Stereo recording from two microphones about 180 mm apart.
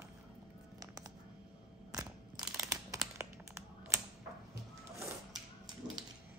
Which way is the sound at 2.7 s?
20° right (ahead or behind).